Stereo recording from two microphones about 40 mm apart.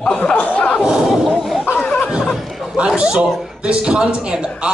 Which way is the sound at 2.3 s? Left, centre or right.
Centre.